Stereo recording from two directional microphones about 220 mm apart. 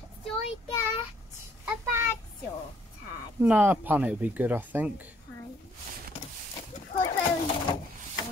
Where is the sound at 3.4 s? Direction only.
5° right (ahead or behind).